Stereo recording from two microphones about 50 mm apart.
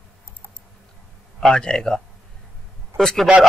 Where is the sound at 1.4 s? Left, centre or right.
Centre.